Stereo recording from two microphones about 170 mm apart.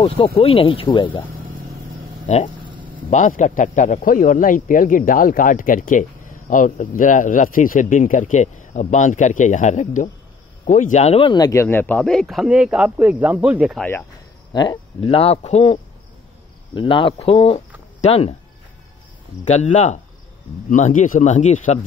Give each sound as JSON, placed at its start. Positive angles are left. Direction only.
{"t": 0.4, "sound": "speech", "side_deg": 35}
{"t": 2.2, "sound": "speech", "side_deg": 40}
{"t": 13.7, "sound": "speech", "side_deg": 10}
{"t": 14.5, "sound": "speech", "side_deg": 25}
{"t": 19.5, "sound": "speech", "side_deg": 40}